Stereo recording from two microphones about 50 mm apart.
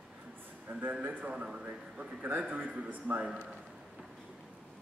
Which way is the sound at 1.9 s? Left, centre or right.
Right.